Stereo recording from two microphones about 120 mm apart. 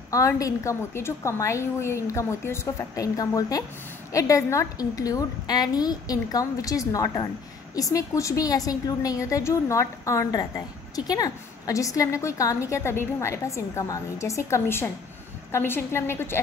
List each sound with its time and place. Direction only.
0.1 s a woman's voice: 25° left (ahead or behind)